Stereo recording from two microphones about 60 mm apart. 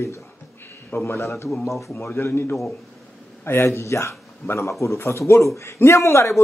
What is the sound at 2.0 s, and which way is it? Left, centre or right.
A man's voice, left.